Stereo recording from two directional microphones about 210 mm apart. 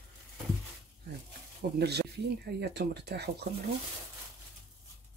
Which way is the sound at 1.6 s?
50° right (ahead or behind).